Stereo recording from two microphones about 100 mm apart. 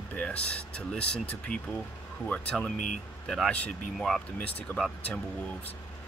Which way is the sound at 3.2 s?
5° left (ahead or behind).